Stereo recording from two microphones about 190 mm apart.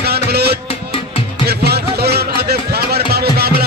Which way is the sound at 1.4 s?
55° right (ahead or behind).